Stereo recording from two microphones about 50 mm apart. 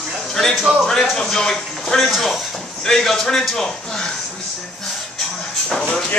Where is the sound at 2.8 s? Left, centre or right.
Centre.